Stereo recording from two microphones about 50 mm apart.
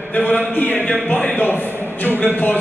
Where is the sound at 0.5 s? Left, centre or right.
Left.